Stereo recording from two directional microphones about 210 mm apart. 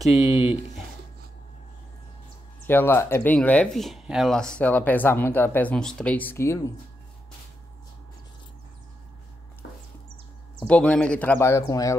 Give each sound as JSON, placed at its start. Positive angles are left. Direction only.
{"t": 0.1, "sound": "speech", "side_deg": 30}
{"t": 2.6, "sound": "speech", "side_deg": 10}
{"t": 10.7, "sound": "speech", "side_deg": 5}